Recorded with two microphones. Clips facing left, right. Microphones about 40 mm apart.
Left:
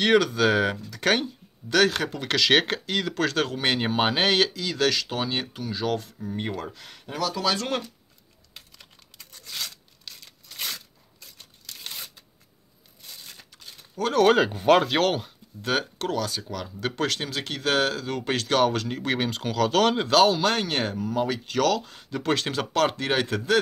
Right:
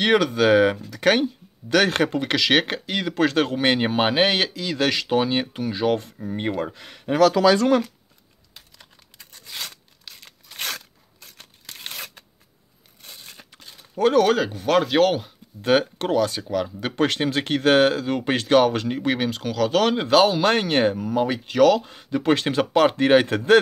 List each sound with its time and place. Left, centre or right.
0.0 s speech: centre
1.9 s speech: right
2.1 s speech: centre
9.4 s a sound: right
10.2 s a sound: right
11.1 s tearing: right
11.6 s tearing: right
11.9 s a sound: right
13.0 s crumpling: right
13.4 s a sound: right
14.2 s speech: centre
14.9 s speech: centre
15.6 s speech: centre